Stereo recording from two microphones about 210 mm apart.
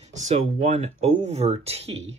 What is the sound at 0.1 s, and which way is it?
Speech, 35° right (ahead or behind).